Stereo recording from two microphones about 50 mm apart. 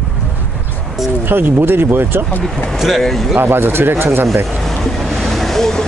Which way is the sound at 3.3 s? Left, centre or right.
Right.